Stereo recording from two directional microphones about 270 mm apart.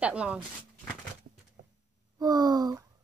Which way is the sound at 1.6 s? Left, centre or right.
Right.